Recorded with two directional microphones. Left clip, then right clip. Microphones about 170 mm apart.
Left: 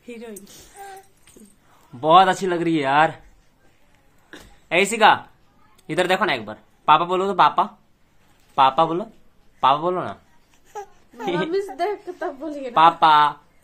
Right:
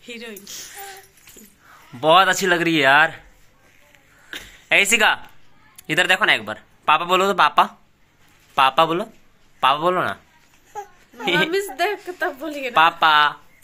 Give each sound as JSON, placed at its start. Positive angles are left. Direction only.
{"t": 0.0, "sound": "speech", "side_deg": 50}
{"t": 2.0, "sound": "speech", "side_deg": 5}
{"t": 4.6, "sound": "speech", "side_deg": 0}
{"t": 11.2, "sound": "speech", "side_deg": 0}
{"t": 11.5, "sound": "a woman's voice", "side_deg": 20}
{"t": 11.8, "sound": "speech", "side_deg": 0}
{"t": 12.4, "sound": "a woman's voice", "side_deg": 25}
{"t": 12.7, "sound": "speech", "side_deg": 0}